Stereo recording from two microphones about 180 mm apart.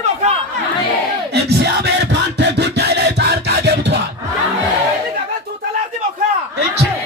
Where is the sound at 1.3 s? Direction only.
65° right (ahead or behind).